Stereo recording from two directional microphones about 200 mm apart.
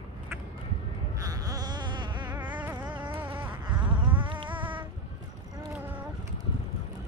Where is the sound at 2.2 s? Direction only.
5° right (ahead or behind).